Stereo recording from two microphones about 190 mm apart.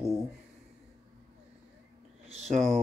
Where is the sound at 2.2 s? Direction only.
35° right (ahead or behind).